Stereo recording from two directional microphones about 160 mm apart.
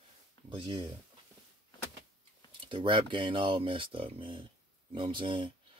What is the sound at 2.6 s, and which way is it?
Speech, 30° right (ahead or behind).